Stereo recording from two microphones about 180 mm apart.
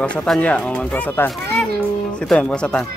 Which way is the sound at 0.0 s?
5° left (ahead or behind).